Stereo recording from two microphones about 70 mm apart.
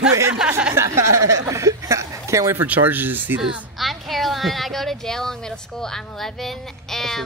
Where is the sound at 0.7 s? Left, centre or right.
Right.